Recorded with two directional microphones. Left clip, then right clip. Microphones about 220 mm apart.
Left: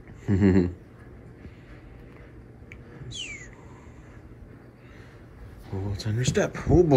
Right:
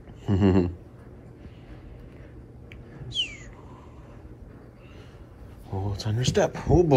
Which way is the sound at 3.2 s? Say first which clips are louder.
Right 7 dB; 35° right (ahead or behind).